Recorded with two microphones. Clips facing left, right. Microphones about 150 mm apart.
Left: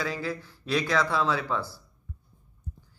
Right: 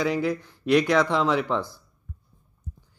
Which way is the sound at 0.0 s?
20° right (ahead or behind).